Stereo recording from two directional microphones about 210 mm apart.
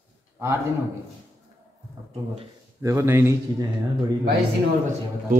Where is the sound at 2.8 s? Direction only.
15° right (ahead or behind).